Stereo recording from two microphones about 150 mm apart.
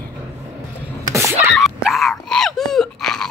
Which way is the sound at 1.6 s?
Centre (ahead or behind).